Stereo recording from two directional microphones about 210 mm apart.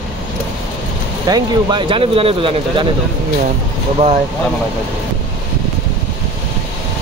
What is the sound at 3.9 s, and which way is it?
Speech, 30° right (ahead or behind).